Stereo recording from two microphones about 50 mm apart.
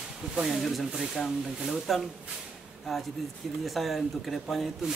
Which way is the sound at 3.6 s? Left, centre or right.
Centre.